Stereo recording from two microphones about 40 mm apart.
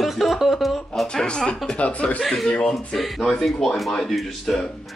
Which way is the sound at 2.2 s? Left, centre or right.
Centre.